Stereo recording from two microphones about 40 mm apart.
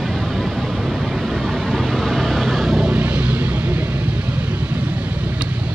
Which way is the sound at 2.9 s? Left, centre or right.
Right.